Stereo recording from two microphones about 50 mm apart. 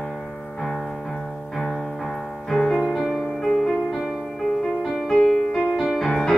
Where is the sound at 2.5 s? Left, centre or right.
Centre.